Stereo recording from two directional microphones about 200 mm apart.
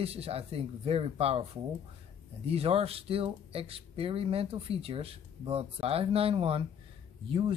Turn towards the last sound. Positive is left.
turn(degrees=-25)  # may be behind; listen again after turning